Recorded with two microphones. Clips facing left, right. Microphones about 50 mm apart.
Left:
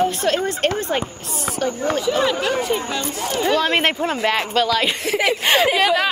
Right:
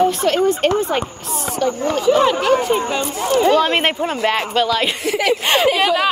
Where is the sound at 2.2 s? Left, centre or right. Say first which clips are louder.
Right 5 dB; right.